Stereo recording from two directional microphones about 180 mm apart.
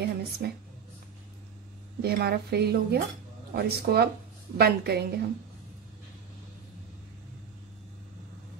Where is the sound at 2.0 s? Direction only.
60° right (ahead or behind).